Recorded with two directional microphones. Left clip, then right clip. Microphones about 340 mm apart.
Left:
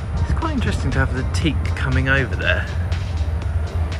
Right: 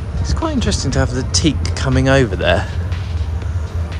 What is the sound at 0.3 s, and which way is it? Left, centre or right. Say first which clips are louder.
Speech: right 5 dB; centre.